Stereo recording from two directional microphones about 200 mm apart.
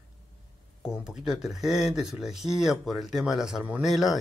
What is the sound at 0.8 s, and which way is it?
Speech, 5° right (ahead or behind).